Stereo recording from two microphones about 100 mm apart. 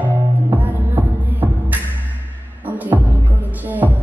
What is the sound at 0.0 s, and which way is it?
Music, 15° right (ahead or behind).